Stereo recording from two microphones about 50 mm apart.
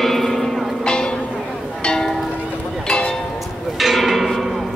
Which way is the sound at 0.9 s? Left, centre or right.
Centre.